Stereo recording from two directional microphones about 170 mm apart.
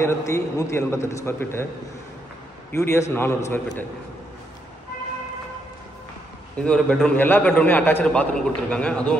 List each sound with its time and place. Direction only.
0.0 s a man's voice: 20° left (ahead or behind)
2.7 s a man's voice: 15° left (ahead or behind)
6.5 s a man's voice: 5° left (ahead or behind)